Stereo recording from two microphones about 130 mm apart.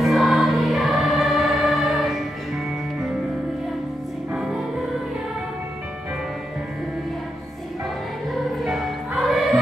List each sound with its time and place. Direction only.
0.0 s choir: centre (ahead or behind)
4.3 s music: 5° right (ahead or behind)
8.5 s music: centre (ahead or behind)